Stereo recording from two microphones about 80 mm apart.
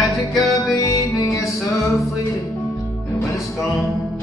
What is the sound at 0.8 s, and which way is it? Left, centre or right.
Music, left.